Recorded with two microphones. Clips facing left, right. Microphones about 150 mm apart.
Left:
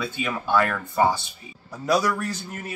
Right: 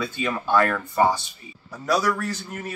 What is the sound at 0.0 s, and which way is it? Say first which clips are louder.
A man's voice: right 1 dB; 5° left (ahead or behind).